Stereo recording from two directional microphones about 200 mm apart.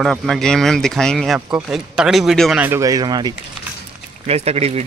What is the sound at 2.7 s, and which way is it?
Speech, 15° right (ahead or behind).